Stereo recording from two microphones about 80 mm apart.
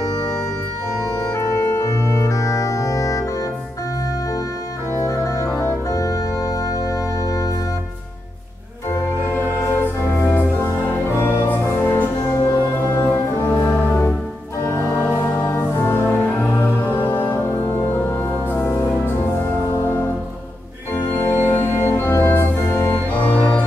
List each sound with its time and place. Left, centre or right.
1.2 s organ: left
5.0 s organ: left
9.7 s music: left
15.5 s music: left
20.9 s organ: left
23.2 s organ: centre